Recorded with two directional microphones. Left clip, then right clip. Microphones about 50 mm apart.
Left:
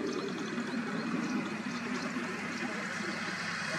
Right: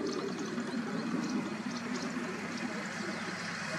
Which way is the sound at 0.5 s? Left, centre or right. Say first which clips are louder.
Left 1 dB; left.